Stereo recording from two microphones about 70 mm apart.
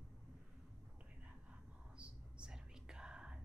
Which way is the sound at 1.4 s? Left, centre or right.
Centre.